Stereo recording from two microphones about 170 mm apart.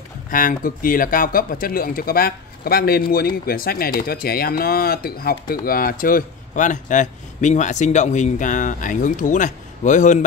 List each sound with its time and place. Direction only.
0.3 s speech: 55° left (ahead or behind)